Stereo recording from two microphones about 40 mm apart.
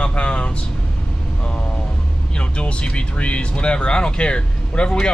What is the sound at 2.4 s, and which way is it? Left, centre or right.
Speech, left.